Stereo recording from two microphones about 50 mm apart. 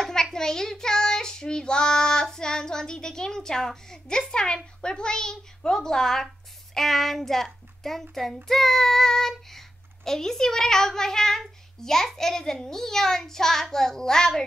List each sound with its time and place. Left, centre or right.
0.0 s child singing: centre
4.3 s a woman's voice: centre